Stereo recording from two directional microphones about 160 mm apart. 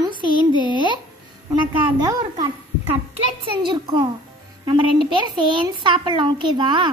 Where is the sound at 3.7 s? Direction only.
30° right (ahead or behind).